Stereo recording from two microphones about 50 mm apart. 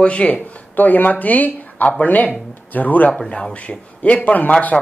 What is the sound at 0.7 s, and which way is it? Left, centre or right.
Speech, left.